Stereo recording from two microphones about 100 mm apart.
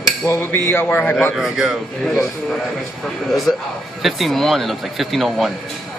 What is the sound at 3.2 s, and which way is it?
A man's voice, centre (ahead or behind).